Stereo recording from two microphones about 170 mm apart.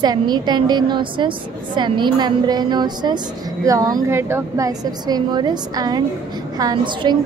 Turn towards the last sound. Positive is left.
turn(degrees=-25)  # may be behind; listen again after turning